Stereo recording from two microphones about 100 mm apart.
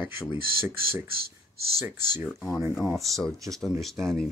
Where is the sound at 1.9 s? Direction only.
40° left (ahead or behind).